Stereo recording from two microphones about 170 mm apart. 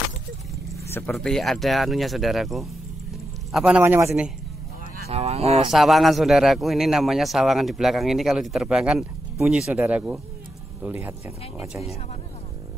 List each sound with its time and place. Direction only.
0.7 s vehicle: 15° left (ahead or behind)
1.1 s a man's voice: centre (ahead or behind); by 4.1 s 15° right (ahead or behind)
5.1 s speech: 40° right (ahead or behind)
5.7 s a man's voice: centre (ahead or behind)